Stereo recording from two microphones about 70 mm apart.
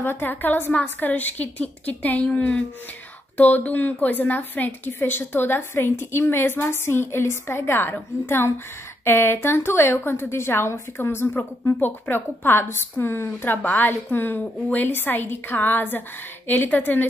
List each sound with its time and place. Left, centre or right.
0.0 s a woman's voice: left